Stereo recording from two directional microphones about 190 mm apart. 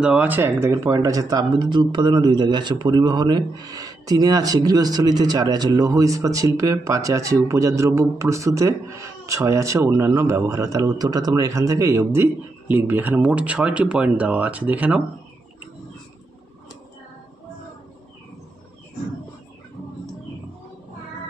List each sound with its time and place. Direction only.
0.0 s speech: 5° right (ahead or behind)